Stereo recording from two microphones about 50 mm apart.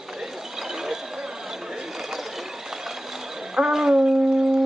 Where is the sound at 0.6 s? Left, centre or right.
Centre.